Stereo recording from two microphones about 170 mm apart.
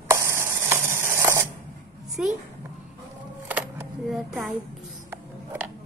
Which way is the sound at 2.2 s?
5° right (ahead or behind).